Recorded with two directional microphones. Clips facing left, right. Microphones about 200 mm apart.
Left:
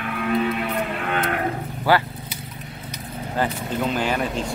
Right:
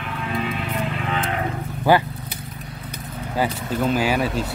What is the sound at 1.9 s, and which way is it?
Speech, 20° right (ahead or behind).